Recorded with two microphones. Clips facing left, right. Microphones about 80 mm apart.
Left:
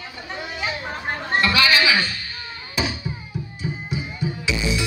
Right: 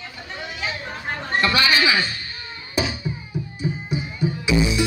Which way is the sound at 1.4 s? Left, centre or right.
Right.